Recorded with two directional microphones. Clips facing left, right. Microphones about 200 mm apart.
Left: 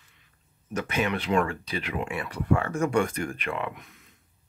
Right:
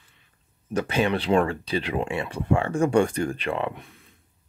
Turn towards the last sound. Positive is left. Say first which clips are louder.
# right 4 dB
turn(degrees=-30)  # may be behind; listen again after turning